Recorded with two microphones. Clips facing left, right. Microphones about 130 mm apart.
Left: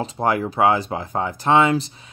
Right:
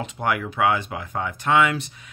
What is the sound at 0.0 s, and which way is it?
Speech, 35° left (ahead or behind).